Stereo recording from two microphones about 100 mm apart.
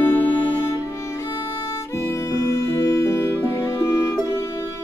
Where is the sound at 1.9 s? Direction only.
25° left (ahead or behind).